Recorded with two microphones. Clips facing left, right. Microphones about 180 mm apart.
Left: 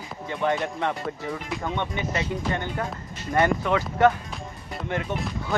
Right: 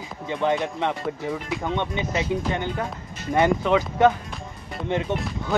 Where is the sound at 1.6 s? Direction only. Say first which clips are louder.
Right 1 dB; 15° right (ahead or behind).